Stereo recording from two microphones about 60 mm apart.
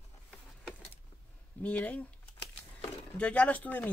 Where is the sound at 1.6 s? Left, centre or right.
Left.